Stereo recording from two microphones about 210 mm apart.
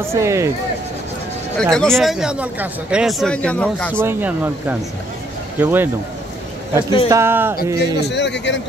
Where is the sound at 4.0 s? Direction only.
10° right (ahead or behind).